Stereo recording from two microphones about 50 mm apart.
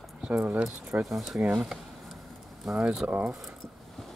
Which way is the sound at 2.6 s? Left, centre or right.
Centre.